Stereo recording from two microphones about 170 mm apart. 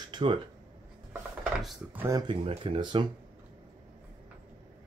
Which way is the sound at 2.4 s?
35° right (ahead or behind).